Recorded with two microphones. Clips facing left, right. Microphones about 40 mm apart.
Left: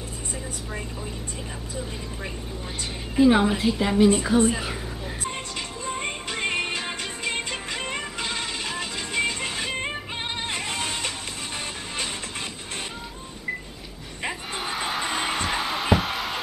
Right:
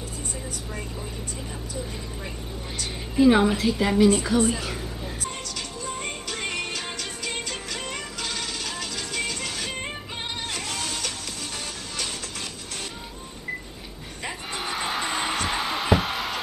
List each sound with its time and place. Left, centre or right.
3.2 s a woman's voice: centre
4.0 s speech: centre
5.9 s music: left
14.5 s music: centre